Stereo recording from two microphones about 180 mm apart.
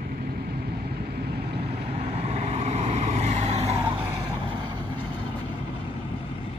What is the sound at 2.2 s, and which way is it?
Vehicle, 35° right (ahead or behind).